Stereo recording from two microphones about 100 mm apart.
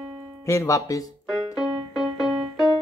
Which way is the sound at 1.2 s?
5° right (ahead or behind).